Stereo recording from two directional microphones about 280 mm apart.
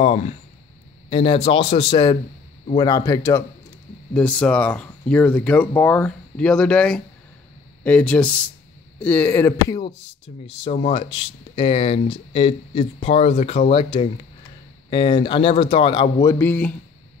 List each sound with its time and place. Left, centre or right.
0.0 s speech: left; by 16.7 s centre